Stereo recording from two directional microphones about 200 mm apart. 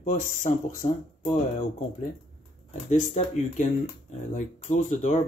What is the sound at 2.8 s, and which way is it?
Speech, 35° left (ahead or behind).